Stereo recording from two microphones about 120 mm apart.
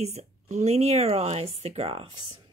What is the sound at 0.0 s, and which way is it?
Speech, 65° right (ahead or behind).